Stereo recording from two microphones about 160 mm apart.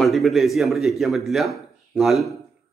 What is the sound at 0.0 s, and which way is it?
A man's voice, centre (ahead or behind).